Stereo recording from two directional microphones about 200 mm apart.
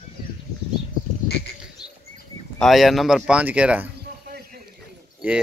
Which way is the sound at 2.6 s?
Centre (ahead or behind).